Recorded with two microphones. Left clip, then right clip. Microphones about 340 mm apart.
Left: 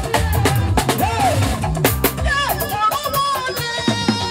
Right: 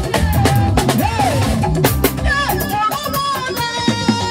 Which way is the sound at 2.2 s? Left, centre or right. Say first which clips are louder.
Right 1 dB; right.